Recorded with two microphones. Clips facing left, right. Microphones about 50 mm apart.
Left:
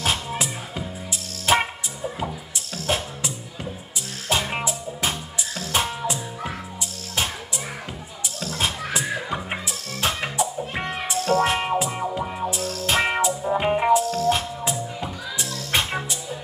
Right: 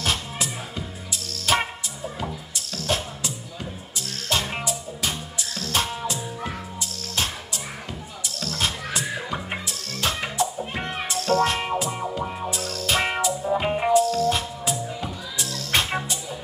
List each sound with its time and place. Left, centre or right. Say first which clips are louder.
0.0 s music: left 2 dB; centre
2.7 s music: left 1 dB; left
8.4 s music: left 1 dB; centre
15.9 s music: even; centre